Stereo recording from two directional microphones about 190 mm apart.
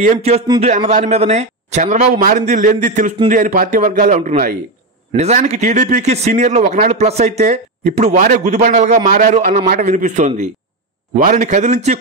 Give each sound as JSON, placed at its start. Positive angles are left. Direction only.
{"t": 0.0, "sound": "a man's voice", "side_deg": -35}